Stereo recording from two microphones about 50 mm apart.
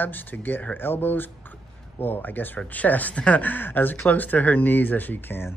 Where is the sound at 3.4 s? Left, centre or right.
Left.